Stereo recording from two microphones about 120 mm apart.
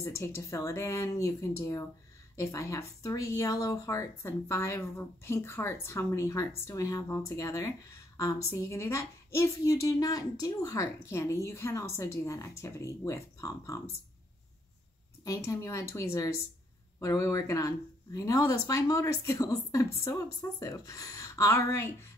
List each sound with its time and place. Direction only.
0.0 s speech: 25° left (ahead or behind)
15.2 s speech: 25° left (ahead or behind)